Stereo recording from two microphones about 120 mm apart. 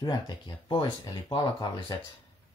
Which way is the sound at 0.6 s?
40° left (ahead or behind).